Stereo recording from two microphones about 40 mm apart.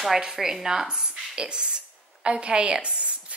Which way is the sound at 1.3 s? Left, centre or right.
Right.